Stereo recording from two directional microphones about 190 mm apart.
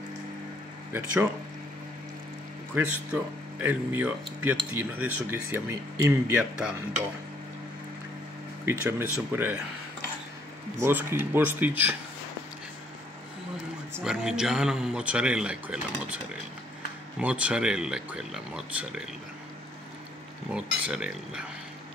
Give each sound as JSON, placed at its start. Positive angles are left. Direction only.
{"t": 2.7, "sound": "speech", "side_deg": -5}
{"t": 8.6, "sound": "speech", "side_deg": -10}
{"t": 10.8, "sound": "speech", "side_deg": -10}
{"t": 14.0, "sound": "speech", "side_deg": -5}
{"t": 17.2, "sound": "speech", "side_deg": -5}
{"t": 20.5, "sound": "speech", "side_deg": -5}